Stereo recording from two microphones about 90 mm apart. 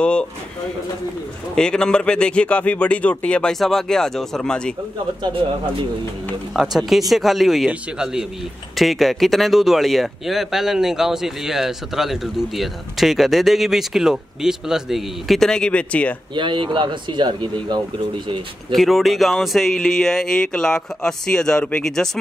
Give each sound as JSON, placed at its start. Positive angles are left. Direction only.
{"t": 0.0, "sound": "a man's voice", "side_deg": 10}
{"t": 1.5, "sound": "a man's voice", "side_deg": 10}
{"t": 6.5, "sound": "speech", "side_deg": 0}
{"t": 16.3, "sound": "speech", "side_deg": -65}
{"t": 18.7, "sound": "speech", "side_deg": 0}